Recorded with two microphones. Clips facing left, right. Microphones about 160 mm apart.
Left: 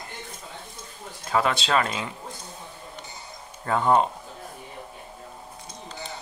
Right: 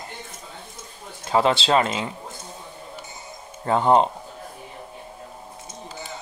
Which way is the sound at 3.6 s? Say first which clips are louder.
Right 3 dB; 25° right (ahead or behind).